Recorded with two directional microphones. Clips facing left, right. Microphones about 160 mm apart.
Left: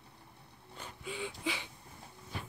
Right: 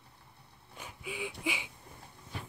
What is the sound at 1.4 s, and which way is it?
Speech, 15° right (ahead or behind).